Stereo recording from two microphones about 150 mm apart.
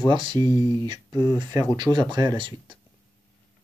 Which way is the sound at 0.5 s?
25° left (ahead or behind).